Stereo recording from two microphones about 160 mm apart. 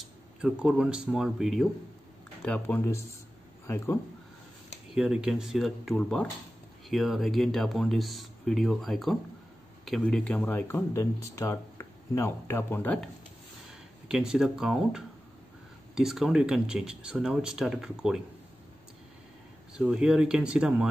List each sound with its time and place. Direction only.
0.0 s speech: 5° right (ahead or behind); by 4.0 s 15° left (ahead or behind)
4.9 s speech: 5° right (ahead or behind)
14.0 s speech: 5° right (ahead or behind)
19.8 s speech: 5° right (ahead or behind)